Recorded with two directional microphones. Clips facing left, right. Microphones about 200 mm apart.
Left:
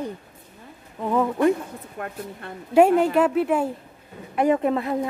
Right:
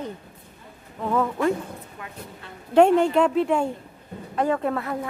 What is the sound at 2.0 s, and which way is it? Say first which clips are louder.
Speech: left 6 dB; 55° left (ahead or behind).